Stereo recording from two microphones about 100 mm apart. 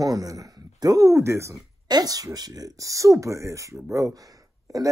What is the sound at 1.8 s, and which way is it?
Speech, 40° right (ahead or behind).